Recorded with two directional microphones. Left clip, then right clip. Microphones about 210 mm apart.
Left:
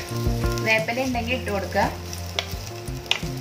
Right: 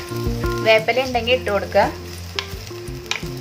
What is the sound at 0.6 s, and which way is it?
Speech, 45° right (ahead or behind).